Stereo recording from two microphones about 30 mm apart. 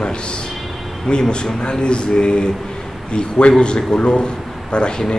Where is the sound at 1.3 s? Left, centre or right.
Left.